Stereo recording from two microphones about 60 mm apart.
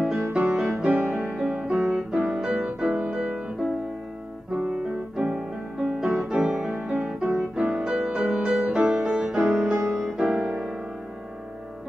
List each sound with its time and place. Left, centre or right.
0.0 s music: centre
4.5 s music: right
5.1 s music: centre